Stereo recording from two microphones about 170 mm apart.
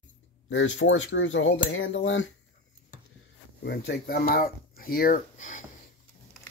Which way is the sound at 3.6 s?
65° left (ahead or behind).